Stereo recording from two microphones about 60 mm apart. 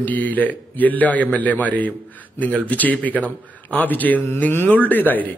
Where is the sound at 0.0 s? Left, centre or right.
Left.